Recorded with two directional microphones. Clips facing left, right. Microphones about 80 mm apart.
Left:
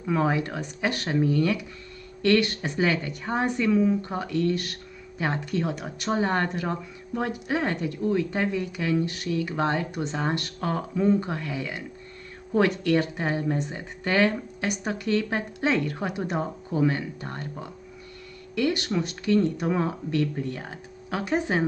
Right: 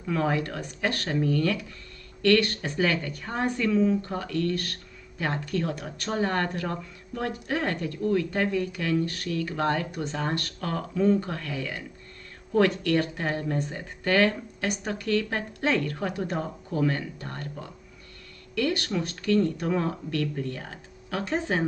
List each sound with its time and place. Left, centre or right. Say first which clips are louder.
0.0 s speech: left 2 dB; centre